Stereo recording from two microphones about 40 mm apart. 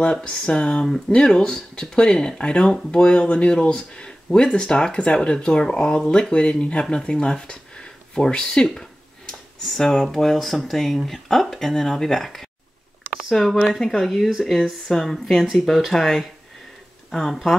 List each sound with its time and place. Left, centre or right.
0.0 s speech: left
9.7 s speech: centre